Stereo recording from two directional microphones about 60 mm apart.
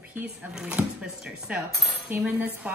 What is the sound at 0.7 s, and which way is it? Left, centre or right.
A woman's voice, right.